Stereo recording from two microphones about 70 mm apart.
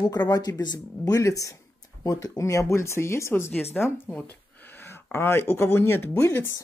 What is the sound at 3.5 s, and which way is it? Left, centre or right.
Speech, left.